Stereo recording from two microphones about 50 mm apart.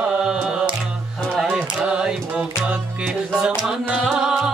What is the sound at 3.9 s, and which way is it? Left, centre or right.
Music, centre.